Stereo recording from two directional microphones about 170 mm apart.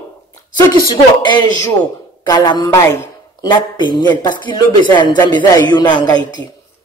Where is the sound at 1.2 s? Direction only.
25° left (ahead or behind).